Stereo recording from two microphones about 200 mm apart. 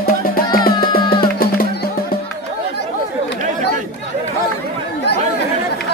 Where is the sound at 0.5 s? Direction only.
45° left (ahead or behind).